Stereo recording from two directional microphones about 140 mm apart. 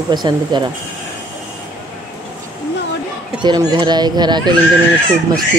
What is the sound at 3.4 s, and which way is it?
Speech, 30° right (ahead or behind).